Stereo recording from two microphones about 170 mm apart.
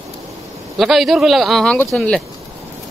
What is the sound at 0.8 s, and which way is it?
Speech, centre (ahead or behind).